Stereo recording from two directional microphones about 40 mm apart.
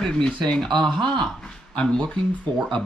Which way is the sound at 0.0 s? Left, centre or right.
Centre.